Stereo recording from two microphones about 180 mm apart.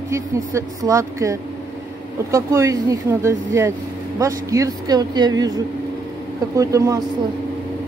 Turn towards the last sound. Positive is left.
turn(degrees=-20)  # may be behind; listen again after turning